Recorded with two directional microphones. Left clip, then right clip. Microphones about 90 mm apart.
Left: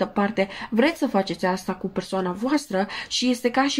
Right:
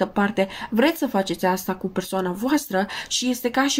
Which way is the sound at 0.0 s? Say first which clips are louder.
Right 1 dB; 35° right (ahead or behind).